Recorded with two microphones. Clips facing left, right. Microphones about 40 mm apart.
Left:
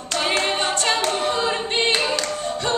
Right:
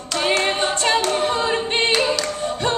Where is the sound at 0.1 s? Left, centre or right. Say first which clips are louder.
Right 2 dB; centre.